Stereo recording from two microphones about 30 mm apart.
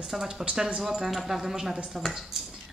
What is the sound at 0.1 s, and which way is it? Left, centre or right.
Speech, centre.